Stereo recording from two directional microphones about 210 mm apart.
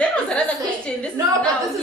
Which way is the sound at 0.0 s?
5° left (ahead or behind).